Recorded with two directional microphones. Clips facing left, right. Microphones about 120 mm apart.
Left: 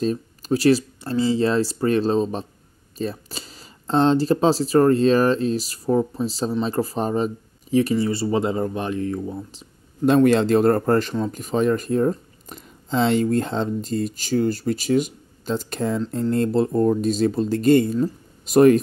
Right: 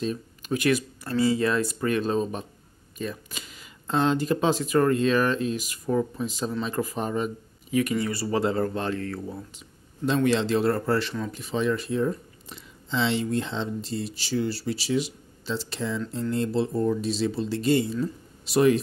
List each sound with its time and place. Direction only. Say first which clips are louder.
0.0 s speech: left 6 dB; 35° left (ahead or behind); by 9.4 s 20° left (ahead or behind)
10.0 s speech: left 7 dB; 50° left (ahead or behind)